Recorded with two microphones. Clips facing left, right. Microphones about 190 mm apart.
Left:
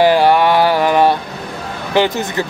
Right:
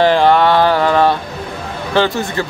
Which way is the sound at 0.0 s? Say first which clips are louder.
Even; 10° left (ahead or behind).